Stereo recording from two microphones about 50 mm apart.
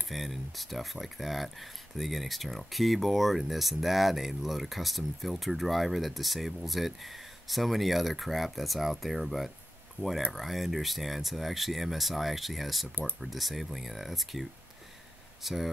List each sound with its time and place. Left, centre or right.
0.1 s speech: centre
10.0 s speech: right
10.3 s speech: centre